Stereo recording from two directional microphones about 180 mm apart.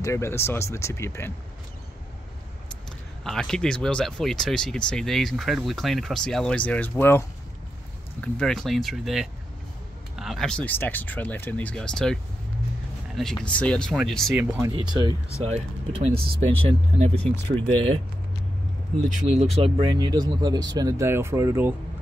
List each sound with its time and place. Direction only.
0.0 s speech: 15° left (ahead or behind)
3.3 s speech: 5° left (ahead or behind)
14.3 s speech: 15° right (ahead or behind); by 17.2 s 35° right (ahead or behind)
19.0 s speech: 35° right (ahead or behind); by 21.7 s 15° right (ahead or behind)